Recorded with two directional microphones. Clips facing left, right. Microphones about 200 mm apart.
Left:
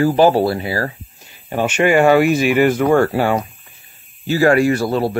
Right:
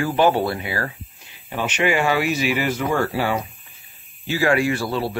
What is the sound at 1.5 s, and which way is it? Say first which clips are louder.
Speech: left 6 dB; 45° left (ahead or behind).